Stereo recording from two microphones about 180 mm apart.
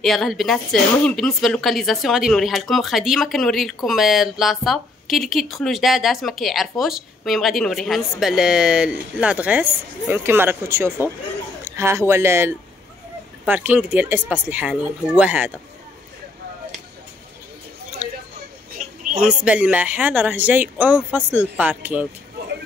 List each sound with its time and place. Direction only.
0.0 s speech: centre (ahead or behind)
18.8 s a sound: 50° right (ahead or behind)
19.2 s speech: 5° right (ahead or behind)